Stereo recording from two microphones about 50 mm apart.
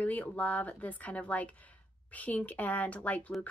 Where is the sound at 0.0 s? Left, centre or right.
Left.